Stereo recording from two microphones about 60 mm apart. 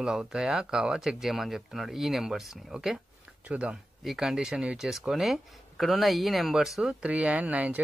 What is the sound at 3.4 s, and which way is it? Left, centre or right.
Speech, centre.